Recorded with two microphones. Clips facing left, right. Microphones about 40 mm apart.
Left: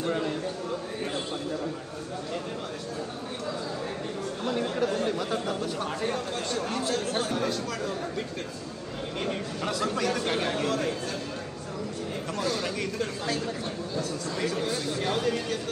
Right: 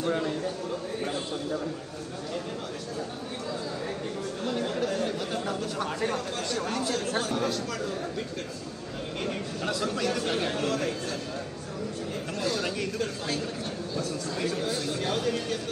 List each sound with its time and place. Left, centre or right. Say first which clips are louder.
4.8 s speech: left 2 dB; left
9.7 s speech: left 1 dB; left
13.9 s speech: even; left
15.0 s speech: left 2 dB; centre